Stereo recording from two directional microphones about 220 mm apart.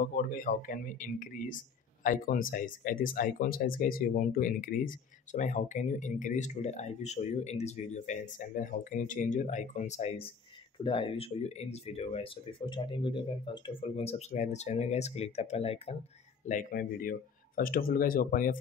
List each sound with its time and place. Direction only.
0.2 s speech: 40° left (ahead or behind)
16.4 s speech: 35° left (ahead or behind)